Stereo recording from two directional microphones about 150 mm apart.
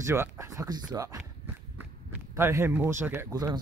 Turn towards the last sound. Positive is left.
turn(degrees=-15)  # may be behind; listen again after turning